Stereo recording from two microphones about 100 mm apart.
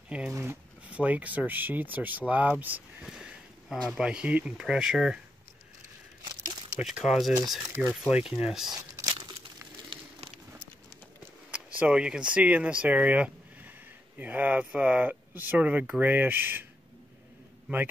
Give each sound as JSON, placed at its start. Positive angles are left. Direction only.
{"t": 0.3, "sound": "speech", "side_deg": -25}
{"t": 0.8, "sound": "speech", "side_deg": -15}
{"t": 6.8, "sound": "speech", "side_deg": -5}
{"t": 7.8, "sound": "speech", "side_deg": -15}
{"t": 8.6, "sound": "speech", "side_deg": -35}
{"t": 9.0, "sound": "crumpling", "side_deg": -55}
{"t": 9.8, "sound": "a sound", "side_deg": -80}
{"t": 11.5, "sound": "speech", "side_deg": -15}
{"t": 17.7, "sound": "speech", "side_deg": -15}